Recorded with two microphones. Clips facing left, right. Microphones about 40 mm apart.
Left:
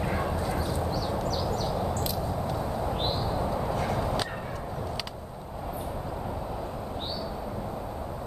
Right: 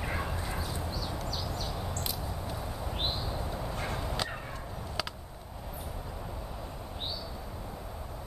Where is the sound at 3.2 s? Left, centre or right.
Centre.